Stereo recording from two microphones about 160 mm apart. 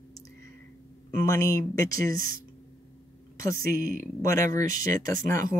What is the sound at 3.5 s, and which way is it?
Speech, 65° right (ahead or behind).